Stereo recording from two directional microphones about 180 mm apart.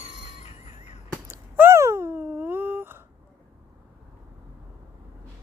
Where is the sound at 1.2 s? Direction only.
10° right (ahead or behind).